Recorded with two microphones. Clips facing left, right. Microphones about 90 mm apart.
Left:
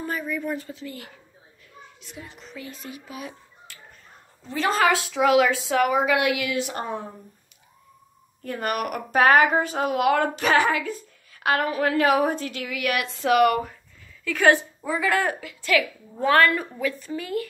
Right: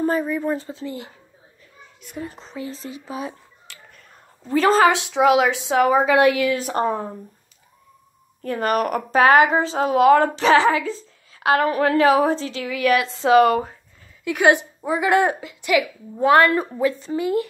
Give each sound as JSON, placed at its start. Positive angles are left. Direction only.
{"t": 0.0, "sound": "a woman's voice", "side_deg": -35}
{"t": 2.0, "sound": "a woman's voice", "side_deg": -50}
{"t": 2.3, "sound": "a woman's voice", "side_deg": -30}
{"t": 3.7, "sound": "finger snapping", "side_deg": -75}
{"t": 4.5, "sound": "a woman's voice", "side_deg": -40}
{"t": 4.9, "sound": "a woman's voice", "side_deg": -20}
{"t": 8.4, "sound": "a woman's voice", "side_deg": -40}
{"t": 14.2, "sound": "a woman's voice", "side_deg": -15}
{"t": 16.5, "sound": "a woman's voice", "side_deg": -30}